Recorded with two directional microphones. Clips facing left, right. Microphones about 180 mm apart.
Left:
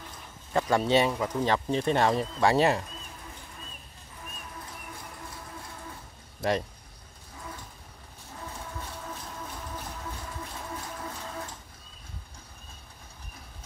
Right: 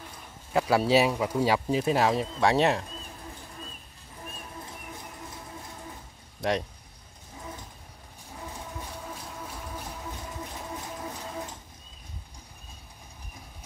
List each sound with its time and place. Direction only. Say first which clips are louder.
0.5 s speech: right 1 dB; 5° right (ahead or behind)
6.4 s speech: even; centre (ahead or behind)
8.4 s vehicle: even; 15° right (ahead or behind)
10.4 s a sound: right 1 dB; 15° right (ahead or behind)